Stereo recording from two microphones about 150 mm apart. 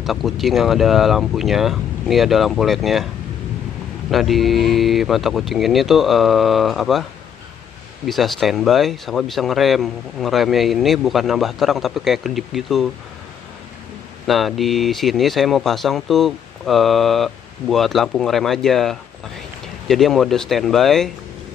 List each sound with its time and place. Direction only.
0.0 s speech: centre (ahead or behind)
4.1 s speech: centre (ahead or behind)
8.1 s speech: centre (ahead or behind)
14.2 s speech: centre (ahead or behind)